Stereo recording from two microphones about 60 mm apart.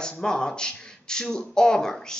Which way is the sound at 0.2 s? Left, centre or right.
Centre.